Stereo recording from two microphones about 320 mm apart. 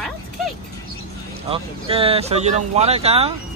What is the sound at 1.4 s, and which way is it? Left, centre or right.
Speech, centre.